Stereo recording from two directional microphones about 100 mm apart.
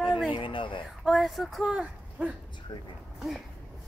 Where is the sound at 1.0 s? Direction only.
Centre (ahead or behind).